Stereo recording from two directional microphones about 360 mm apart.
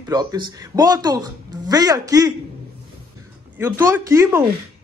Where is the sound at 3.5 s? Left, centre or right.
Centre.